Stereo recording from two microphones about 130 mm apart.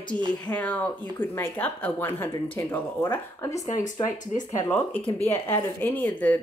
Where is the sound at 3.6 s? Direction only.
70° left (ahead or behind).